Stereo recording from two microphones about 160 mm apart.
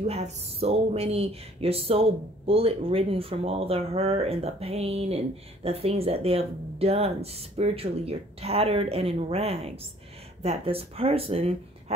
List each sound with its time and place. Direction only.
0.0 s speech: 40° right (ahead or behind)